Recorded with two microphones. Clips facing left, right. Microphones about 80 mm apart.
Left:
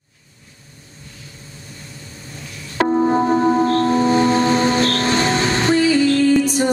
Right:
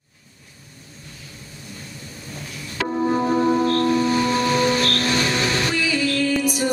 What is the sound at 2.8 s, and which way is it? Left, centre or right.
Gong, left.